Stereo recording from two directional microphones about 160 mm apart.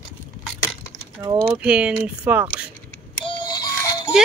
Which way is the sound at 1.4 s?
5° right (ahead or behind).